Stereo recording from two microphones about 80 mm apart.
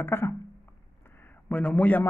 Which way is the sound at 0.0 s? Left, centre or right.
Left.